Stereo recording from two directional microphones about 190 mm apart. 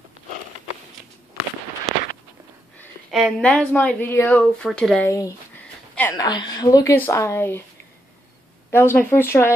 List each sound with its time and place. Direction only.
3.1 s a woman's voice: centre (ahead or behind)
5.9 s a woman's voice: 15° left (ahead or behind)
8.6 s a woman's voice: 10° left (ahead or behind)